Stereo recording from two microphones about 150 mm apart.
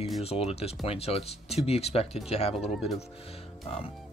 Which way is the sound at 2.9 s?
40° left (ahead or behind).